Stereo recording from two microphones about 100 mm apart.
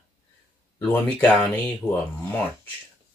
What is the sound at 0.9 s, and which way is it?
Speech, 15° left (ahead or behind).